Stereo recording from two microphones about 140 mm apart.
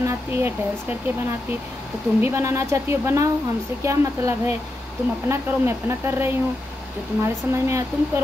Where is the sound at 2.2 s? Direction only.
20° right (ahead or behind).